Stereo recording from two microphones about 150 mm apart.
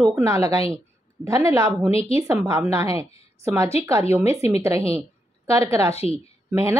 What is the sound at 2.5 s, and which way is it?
A woman's voice, 20° right (ahead or behind).